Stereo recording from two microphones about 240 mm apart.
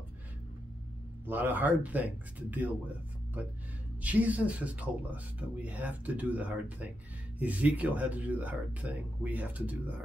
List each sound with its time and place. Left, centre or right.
1.2 s speech: centre
4.0 s speech: centre